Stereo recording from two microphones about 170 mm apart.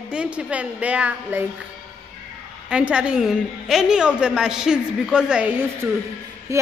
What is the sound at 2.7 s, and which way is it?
A woman's voice, 5° right (ahead or behind).